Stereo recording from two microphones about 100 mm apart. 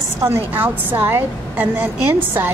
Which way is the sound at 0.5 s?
20° right (ahead or behind).